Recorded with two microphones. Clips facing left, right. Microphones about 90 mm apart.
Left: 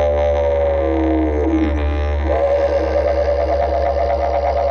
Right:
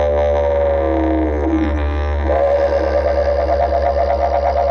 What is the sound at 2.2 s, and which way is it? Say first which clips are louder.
Music: right 1 dB; 55° right (ahead or behind).